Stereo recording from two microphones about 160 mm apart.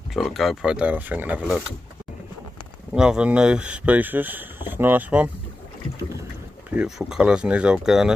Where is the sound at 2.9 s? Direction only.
5° right (ahead or behind).